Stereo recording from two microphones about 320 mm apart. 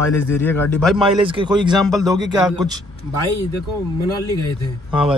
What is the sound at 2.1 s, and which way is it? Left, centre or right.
Speech, centre.